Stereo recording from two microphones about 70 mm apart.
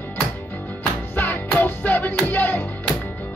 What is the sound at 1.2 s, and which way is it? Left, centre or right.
Music, left.